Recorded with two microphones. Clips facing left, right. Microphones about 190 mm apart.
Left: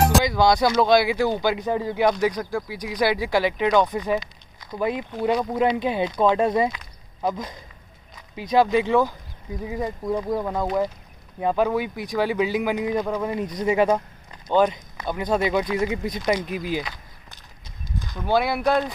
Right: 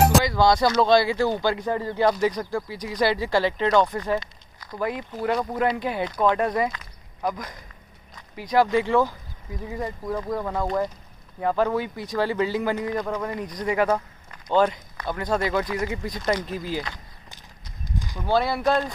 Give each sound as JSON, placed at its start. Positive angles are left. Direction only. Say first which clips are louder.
{"t": 0.2, "sound": "speech", "louder": "left 1 dB", "side_deg": 15}
{"t": 13.3, "sound": "speech", "louder": "left 4 dB", "side_deg": 25}
{"t": 16.2, "sound": "speech", "louder": "even", "side_deg": 10}
{"t": 17.9, "sound": "a sound", "louder": "even", "side_deg": -10}
{"t": 18.2, "sound": "speech", "louder": "left 1 dB", "side_deg": 15}